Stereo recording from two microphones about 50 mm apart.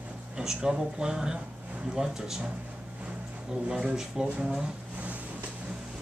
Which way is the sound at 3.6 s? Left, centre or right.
Centre.